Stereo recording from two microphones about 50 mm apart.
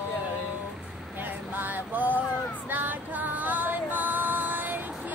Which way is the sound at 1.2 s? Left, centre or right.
Right.